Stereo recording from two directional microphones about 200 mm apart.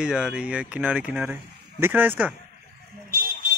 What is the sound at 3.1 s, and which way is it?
Vehicle, 45° right (ahead or behind).